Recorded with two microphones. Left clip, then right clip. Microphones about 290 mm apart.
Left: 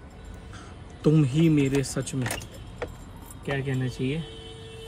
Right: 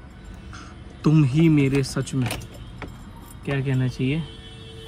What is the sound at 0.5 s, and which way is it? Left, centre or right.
Speech, centre.